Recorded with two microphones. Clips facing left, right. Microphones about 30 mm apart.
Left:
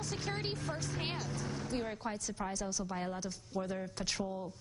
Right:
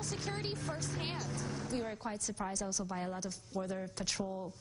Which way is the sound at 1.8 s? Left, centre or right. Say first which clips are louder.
Left 1 dB; left.